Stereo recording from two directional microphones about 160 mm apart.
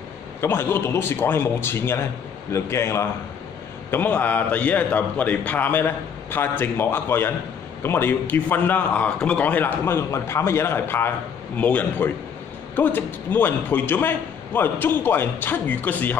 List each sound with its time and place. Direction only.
0.4 s a man's voice: 15° left (ahead or behind)